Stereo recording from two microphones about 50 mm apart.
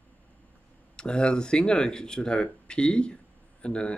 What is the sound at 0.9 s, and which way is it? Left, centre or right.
Speech, centre.